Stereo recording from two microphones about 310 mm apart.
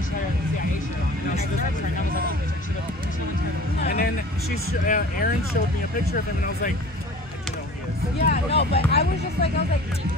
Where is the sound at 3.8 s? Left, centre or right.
Left.